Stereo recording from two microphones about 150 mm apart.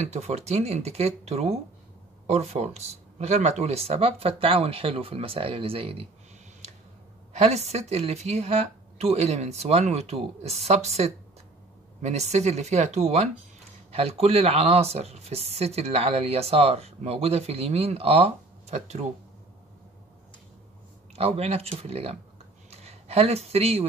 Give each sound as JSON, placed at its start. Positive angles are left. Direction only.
{"t": 0.0, "sound": "speech", "side_deg": -50}
{"t": 7.3, "sound": "speech", "side_deg": -45}
{"t": 21.2, "sound": "speech", "side_deg": -40}